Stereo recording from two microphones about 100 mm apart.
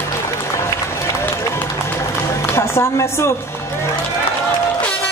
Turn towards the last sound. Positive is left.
turn(degrees=25)  # may be behind; listen again after turning